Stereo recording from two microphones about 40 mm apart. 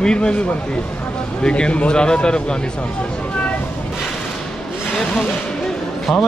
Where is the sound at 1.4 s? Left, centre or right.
Left.